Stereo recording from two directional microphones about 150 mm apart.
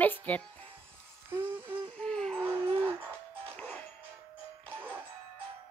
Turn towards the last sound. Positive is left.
turn(degrees=-10)  # may be behind; listen again after turning